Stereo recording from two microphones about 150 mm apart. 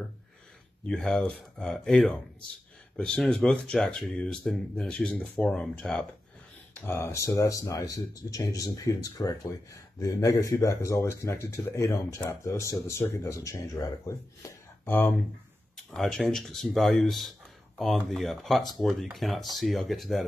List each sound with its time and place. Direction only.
0.8 s speech: 5° left (ahead or behind)
6.7 s speech: 15° left (ahead or behind)
15.7 s speech: 5° left (ahead or behind)